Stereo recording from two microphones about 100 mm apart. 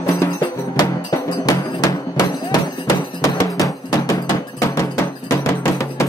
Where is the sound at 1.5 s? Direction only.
40° left (ahead or behind).